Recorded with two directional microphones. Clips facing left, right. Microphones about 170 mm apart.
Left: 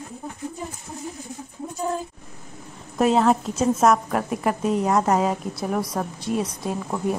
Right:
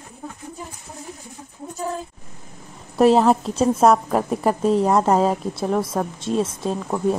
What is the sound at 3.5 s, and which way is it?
A woman's voice, 30° right (ahead or behind).